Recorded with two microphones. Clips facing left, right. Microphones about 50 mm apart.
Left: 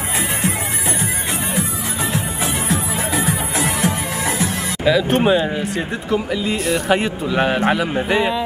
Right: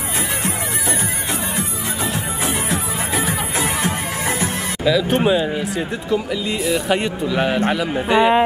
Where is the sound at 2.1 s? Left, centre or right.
Right.